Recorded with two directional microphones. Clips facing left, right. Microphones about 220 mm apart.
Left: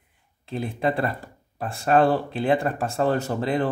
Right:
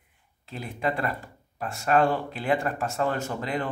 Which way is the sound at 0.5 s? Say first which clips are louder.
Left 5 dB; 30° left (ahead or behind).